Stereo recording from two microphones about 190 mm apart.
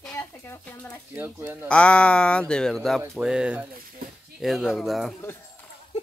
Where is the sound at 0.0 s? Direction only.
10° left (ahead or behind).